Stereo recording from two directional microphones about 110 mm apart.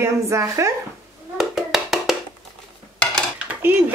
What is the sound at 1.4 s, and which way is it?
Hands, 5° right (ahead or behind).